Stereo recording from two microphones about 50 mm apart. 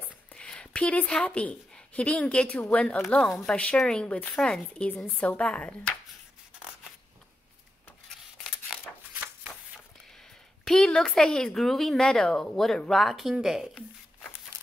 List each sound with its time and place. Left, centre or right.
0.3 s a sound: centre
0.9 s a woman's voice: left
10.6 s speech: centre